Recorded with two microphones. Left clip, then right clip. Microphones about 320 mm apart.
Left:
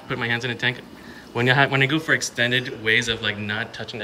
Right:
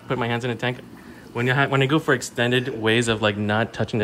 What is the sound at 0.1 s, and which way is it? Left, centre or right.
Speech, centre.